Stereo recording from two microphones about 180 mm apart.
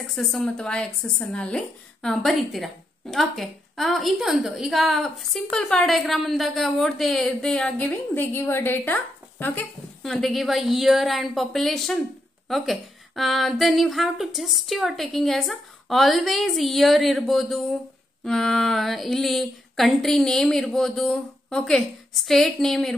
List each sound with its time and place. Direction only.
0.0 s a woman's voice: centre (ahead or behind)